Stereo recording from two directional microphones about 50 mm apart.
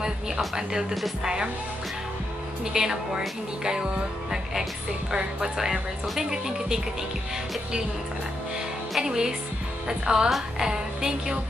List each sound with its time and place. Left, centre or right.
0.6 s speech: centre
2.6 s speech: centre
5.1 s speech: centre
8.9 s speech: centre